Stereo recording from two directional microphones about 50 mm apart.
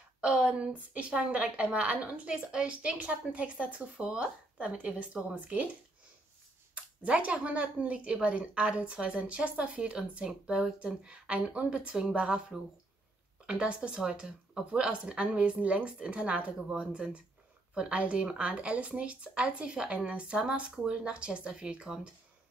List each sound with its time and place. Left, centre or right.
0.2 s speech: right
6.7 s speech: right